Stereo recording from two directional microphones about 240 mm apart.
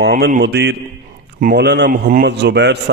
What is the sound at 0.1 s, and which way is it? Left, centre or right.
A man's voice, right.